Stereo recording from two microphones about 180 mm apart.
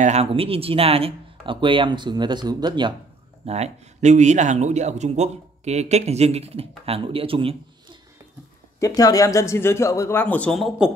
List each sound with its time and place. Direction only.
0.0 s speech: 35° right (ahead or behind)
3.4 s a man's voice: 35° right (ahead or behind)
8.7 s speech: 20° left (ahead or behind); by 10.9 s centre (ahead or behind)